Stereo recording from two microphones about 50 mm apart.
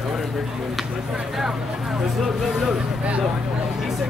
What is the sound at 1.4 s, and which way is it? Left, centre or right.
Speech, centre.